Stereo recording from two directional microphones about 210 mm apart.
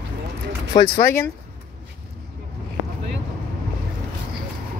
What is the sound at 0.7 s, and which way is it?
Speech, 15° left (ahead or behind).